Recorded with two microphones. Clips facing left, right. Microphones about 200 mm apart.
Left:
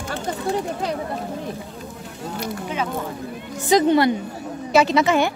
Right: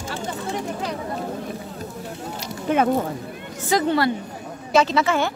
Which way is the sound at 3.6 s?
20° left (ahead or behind).